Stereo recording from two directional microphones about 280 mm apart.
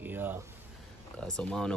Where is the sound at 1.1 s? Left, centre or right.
Centre.